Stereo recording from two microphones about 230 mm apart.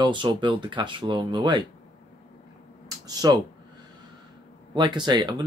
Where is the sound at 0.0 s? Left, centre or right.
Right.